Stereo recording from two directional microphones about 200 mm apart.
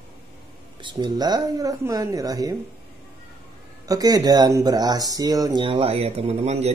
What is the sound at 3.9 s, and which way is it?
Speech, 20° right (ahead or behind).